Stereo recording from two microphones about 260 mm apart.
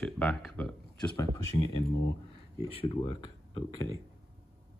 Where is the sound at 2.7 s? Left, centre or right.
Left.